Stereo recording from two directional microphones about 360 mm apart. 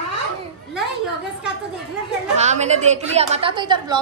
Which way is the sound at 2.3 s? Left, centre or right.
Centre.